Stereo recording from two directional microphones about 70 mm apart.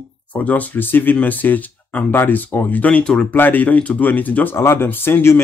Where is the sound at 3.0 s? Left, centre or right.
Centre.